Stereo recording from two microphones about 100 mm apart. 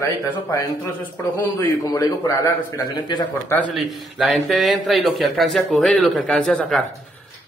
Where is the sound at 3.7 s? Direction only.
Centre (ahead or behind).